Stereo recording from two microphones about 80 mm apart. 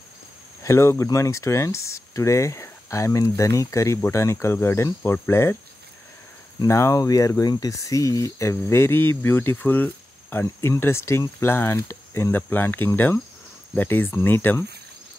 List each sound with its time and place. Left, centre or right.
0.7 s speech: left
6.7 s speech: left